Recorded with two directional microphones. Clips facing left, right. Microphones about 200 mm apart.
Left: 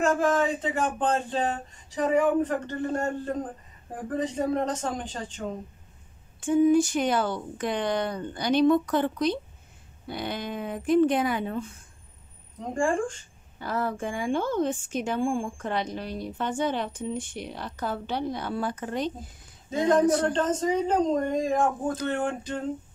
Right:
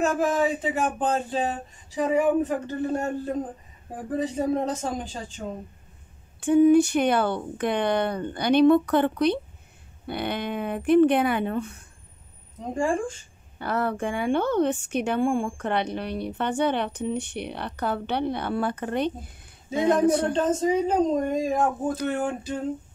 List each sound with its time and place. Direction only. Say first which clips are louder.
0.0 s speech: even; 10° right (ahead or behind)
6.4 s a woman's voice: right 4 dB; 65° right (ahead or behind)
12.7 s speech: even; 5° right (ahead or behind)
13.6 s a woman's voice: right 3 dB; 65° right (ahead or behind)
20.3 s speech: right 2 dB; 10° right (ahead or behind)